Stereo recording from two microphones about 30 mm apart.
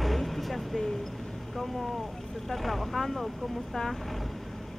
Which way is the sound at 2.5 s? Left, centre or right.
Centre.